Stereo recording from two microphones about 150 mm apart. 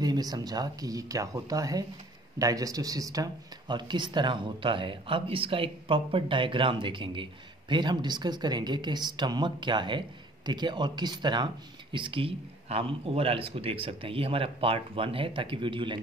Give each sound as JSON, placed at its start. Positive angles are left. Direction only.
{"t": 0.0, "sound": "speech", "side_deg": -25}